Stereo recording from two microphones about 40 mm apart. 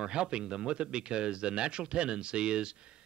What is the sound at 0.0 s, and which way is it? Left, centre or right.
Speech, right.